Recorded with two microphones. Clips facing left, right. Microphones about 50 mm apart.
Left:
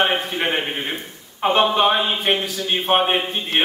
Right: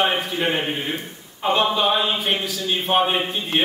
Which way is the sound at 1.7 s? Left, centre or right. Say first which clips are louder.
Left 2 dB; left.